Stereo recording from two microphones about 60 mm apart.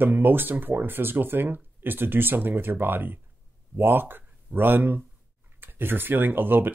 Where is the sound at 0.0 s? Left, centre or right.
Right.